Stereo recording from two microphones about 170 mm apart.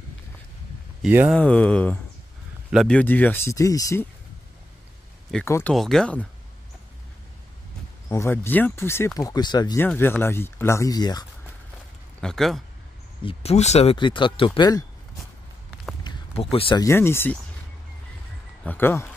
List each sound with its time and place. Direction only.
1.0 s speech: 10° right (ahead or behind)
1.3 s speech: 10° left (ahead or behind)
5.4 s speech: 10° left (ahead or behind)
8.1 s speech: 15° left (ahead or behind)
9.8 s speech: 15° left (ahead or behind)
12.2 s speech: 5° left (ahead or behind)
13.2 s speech: 35° left (ahead or behind)
16.1 s a sound: 25° left (ahead or behind)
16.5 s speech: 30° left (ahead or behind)
16.8 s speech: 15° left (ahead or behind)
18.6 s speech: 10° left (ahead or behind)